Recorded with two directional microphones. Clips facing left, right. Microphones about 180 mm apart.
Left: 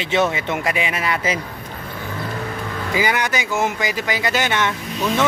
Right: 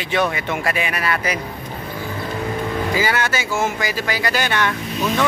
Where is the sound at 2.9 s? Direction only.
15° left (ahead or behind).